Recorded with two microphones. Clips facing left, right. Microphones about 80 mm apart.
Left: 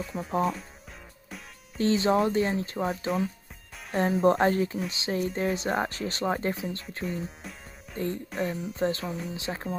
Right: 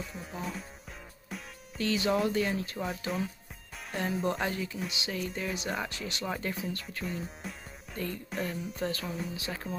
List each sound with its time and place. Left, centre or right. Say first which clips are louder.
0.0 s speech: left 7 dB; centre
1.8 s speech: left 5 dB; left
7.1 s music: left 3 dB; centre
8.3 s speech: left 4 dB; centre
8.7 s speech: left 7 dB; left
9.0 s speech: left 3 dB; centre
9.4 s speech: left 4 dB; left